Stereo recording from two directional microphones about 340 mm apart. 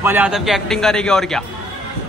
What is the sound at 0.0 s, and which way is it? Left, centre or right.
A man's voice, centre.